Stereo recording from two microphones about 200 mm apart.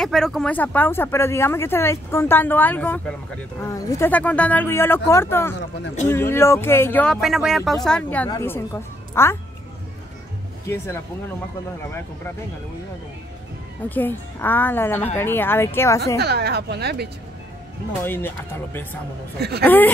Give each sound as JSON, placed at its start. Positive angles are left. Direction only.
{"t": 0.0, "sound": "a woman's voice", "side_deg": 0}
{"t": 10.7, "sound": "speech", "side_deg": 10}
{"t": 13.8, "sound": "speech", "side_deg": 10}
{"t": 16.2, "sound": "speech", "side_deg": -55}
{"t": 18.0, "sound": "speech", "side_deg": 10}